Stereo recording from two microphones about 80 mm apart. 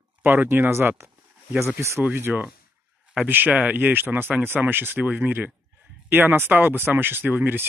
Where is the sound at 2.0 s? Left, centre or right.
Right.